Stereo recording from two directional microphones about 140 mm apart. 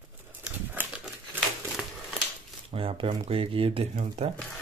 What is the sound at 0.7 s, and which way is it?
Crumpling, 10° right (ahead or behind).